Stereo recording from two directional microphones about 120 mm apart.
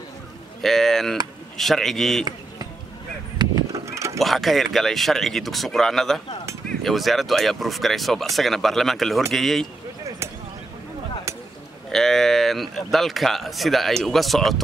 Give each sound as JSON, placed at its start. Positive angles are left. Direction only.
{"t": 0.6, "sound": "speech", "side_deg": 0}
{"t": 3.3, "sound": "a sound", "side_deg": -30}
{"t": 4.2, "sound": "speech", "side_deg": 0}
{"t": 11.9, "sound": "speech", "side_deg": 5}